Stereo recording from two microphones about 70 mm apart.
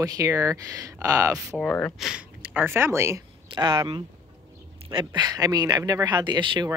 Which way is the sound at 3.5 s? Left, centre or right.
Right.